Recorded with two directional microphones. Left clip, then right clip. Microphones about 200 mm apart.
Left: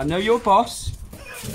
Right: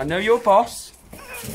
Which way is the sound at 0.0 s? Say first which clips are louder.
Right 1 dB; 5° left (ahead or behind).